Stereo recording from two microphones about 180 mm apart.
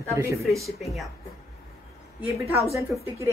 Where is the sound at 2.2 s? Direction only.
10° right (ahead or behind).